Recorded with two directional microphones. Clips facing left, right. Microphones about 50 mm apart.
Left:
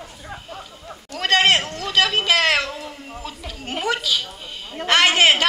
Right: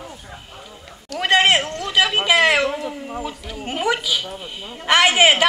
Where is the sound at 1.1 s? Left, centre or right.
Centre.